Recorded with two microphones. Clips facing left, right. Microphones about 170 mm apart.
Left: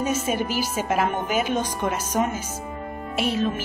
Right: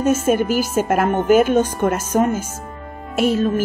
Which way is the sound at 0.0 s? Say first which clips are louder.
Right 7 dB; 50° right (ahead or behind).